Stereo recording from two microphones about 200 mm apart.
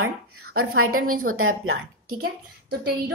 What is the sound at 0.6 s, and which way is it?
A woman's voice, 90° right.